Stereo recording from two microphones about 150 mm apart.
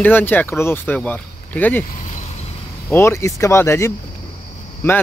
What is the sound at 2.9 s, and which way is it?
Speech, 15° left (ahead or behind).